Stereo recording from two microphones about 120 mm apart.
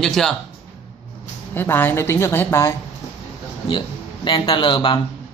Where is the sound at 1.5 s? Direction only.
20° left (ahead or behind).